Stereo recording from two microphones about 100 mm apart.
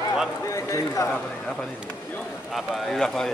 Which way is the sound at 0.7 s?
30° left (ahead or behind).